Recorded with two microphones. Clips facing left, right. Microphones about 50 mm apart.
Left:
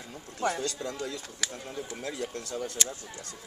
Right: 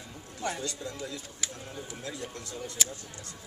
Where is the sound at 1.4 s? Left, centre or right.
Left.